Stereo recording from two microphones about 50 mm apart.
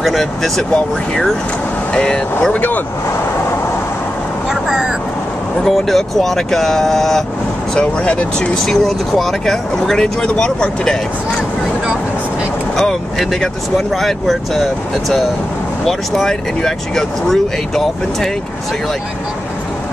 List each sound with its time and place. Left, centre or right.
0.0 s speech: centre
2.5 s speech: left
4.5 s vehicle: centre
5.6 s speech: centre
7.8 s speech: left
8.4 s speech: centre
12.7 s speech: centre